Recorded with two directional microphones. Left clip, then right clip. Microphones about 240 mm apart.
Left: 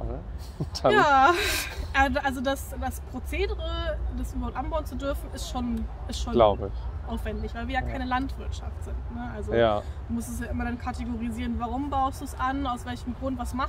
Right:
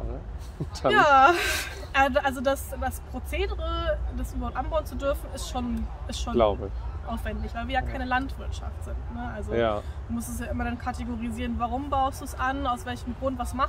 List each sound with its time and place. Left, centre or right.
0.6 s speech: left
0.9 s a woman's voice: centre
6.3 s speech: left
7.1 s a woman's voice: centre
9.5 s speech: left
10.1 s a woman's voice: centre